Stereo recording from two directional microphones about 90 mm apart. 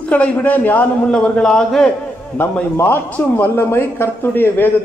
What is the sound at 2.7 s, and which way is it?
A man's voice, 25° left (ahead or behind).